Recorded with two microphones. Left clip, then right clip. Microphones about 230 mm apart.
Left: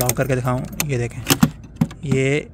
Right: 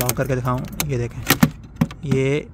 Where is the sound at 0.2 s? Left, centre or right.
Centre.